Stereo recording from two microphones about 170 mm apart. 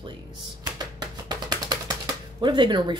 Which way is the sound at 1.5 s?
25° right (ahead or behind).